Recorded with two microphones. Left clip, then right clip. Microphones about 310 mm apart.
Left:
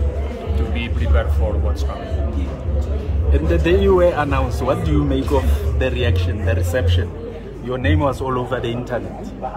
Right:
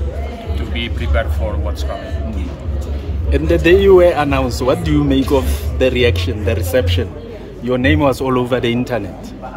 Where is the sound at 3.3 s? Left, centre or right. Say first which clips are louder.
Right 6 dB; right.